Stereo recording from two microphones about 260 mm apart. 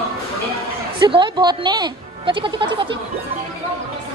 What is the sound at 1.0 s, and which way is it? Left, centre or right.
Speech, centre.